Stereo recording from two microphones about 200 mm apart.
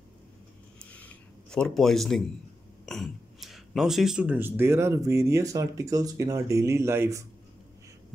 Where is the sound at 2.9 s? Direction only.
Centre (ahead or behind).